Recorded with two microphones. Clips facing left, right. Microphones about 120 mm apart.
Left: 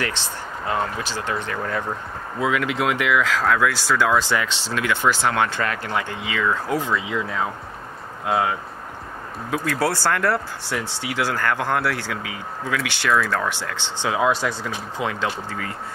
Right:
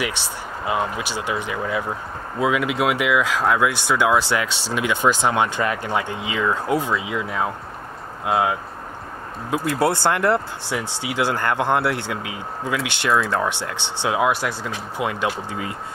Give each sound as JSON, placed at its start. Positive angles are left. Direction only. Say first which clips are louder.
{"t": 0.7, "sound": "speech", "louder": "right 1 dB", "side_deg": -15}
{"t": 2.4, "sound": "speech", "louder": "right 2 dB", "side_deg": -20}
{"t": 9.5, "sound": "speech", "louder": "right 2 dB", "side_deg": -20}